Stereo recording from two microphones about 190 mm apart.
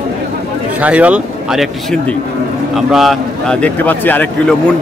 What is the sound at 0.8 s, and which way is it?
A man's voice, 5° right (ahead or behind).